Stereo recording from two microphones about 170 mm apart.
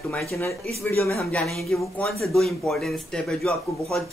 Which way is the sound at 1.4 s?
Centre (ahead or behind).